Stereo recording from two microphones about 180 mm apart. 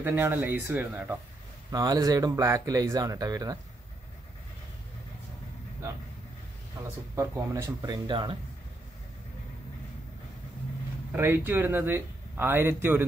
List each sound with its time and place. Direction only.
0.0 s speech: 10° right (ahead or behind)
1.7 s speech: 20° right (ahead or behind)
7.2 s speech: 15° right (ahead or behind)
11.1 s speech: 10° right (ahead or behind)